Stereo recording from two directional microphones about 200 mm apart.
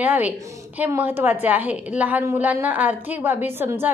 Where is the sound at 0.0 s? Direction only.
10° right (ahead or behind).